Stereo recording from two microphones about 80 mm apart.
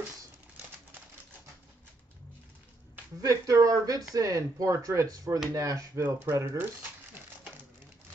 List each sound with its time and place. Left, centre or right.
3.2 s speech: right